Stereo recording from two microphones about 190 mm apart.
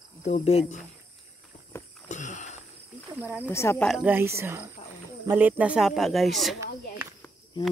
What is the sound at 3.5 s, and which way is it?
Speech, 15° left (ahead or behind).